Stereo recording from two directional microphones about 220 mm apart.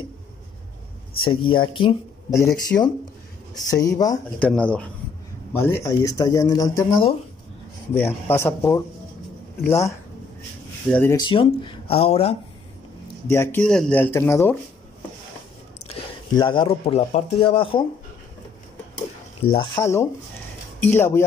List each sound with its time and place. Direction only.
1.2 s speech: 25° left (ahead or behind)
4.5 s speech: 5° left (ahead or behind); by 12.4 s 25° left (ahead or behind)
13.3 s speech: 10° left (ahead or behind)
15.9 s speech: 20° left (ahead or behind)
19.5 s speech: 20° left (ahead or behind)